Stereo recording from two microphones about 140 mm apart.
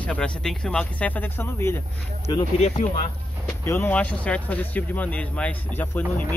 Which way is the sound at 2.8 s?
70° left (ahead or behind).